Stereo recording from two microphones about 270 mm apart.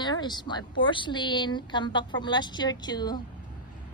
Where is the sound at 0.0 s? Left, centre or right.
Centre.